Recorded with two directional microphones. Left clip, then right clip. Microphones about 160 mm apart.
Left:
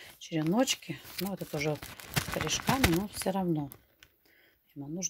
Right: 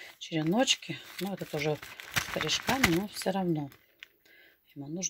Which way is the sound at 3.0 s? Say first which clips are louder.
Right 1 dB; 10° left (ahead or behind).